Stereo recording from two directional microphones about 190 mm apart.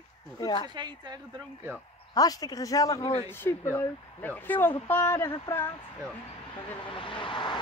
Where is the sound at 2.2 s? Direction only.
20° left (ahead or behind).